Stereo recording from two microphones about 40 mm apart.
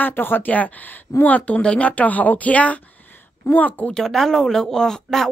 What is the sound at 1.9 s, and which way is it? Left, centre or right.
A woman's voice, left.